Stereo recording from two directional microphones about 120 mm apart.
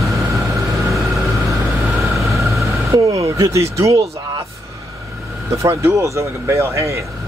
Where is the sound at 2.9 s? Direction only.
25° right (ahead or behind).